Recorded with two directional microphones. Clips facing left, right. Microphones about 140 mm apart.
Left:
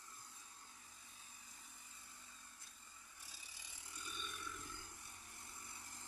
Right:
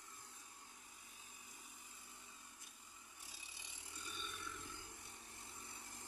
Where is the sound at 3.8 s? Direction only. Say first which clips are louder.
Even; 25° right (ahead or behind).